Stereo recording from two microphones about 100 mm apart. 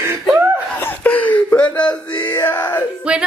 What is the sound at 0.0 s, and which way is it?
Laughter, 25° right (ahead or behind).